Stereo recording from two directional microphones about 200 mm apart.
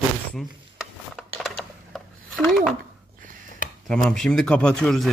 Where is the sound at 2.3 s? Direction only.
Centre (ahead or behind).